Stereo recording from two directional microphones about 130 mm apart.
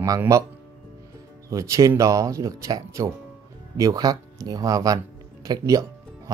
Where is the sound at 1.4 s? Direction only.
25° right (ahead or behind).